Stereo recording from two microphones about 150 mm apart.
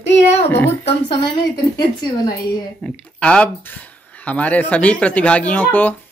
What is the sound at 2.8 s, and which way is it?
Speech, 10° left (ahead or behind).